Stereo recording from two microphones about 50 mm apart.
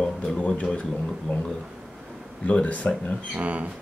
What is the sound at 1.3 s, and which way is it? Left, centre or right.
Speech, left.